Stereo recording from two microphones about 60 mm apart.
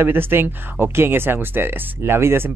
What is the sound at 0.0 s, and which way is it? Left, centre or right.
Speech, right.